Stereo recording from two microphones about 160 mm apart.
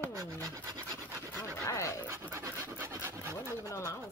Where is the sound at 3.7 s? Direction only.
20° left (ahead or behind).